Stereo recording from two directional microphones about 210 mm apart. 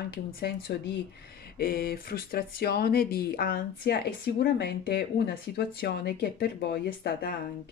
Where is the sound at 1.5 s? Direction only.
45° left (ahead or behind).